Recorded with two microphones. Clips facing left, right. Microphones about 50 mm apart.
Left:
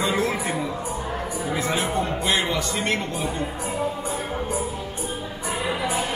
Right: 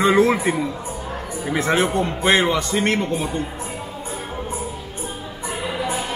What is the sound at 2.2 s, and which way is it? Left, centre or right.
Speech, right.